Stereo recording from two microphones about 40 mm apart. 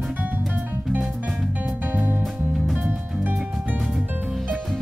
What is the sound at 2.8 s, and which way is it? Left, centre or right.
Music, right.